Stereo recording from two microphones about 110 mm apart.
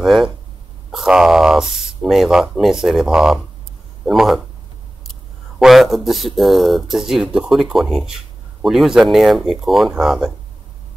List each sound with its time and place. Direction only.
0.0 s speech: centre (ahead or behind)
5.6 s speech: centre (ahead or behind)